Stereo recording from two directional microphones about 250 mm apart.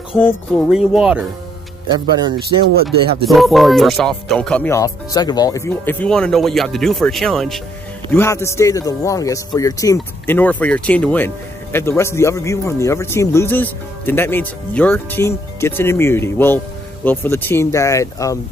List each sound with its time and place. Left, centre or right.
0.1 s speech: centre
1.9 s speech: centre
3.3 s a man's voice: centre